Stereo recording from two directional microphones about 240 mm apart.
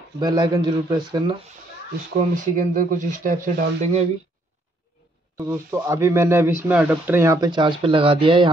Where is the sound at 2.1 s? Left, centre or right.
Right.